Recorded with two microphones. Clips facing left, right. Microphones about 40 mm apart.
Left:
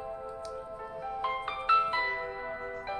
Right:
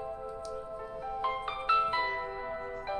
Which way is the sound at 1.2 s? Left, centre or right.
Centre.